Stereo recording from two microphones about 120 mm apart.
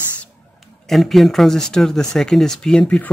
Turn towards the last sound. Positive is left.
turn(degrees=10)  # may be behind; listen again after turning